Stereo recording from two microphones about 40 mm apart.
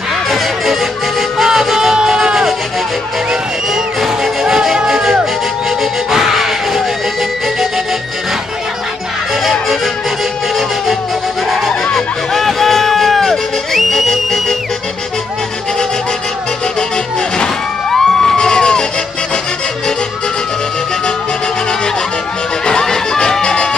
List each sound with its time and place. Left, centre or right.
1.4 s music: centre
9.4 s honk: centre
11.4 s music: centre
17.4 s music: centre
22.7 s a sound: centre